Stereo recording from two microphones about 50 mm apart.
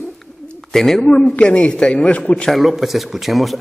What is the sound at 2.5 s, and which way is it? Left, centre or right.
A man's voice, centre.